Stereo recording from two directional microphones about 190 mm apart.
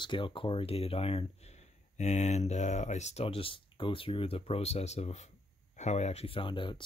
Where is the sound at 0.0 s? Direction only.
25° left (ahead or behind).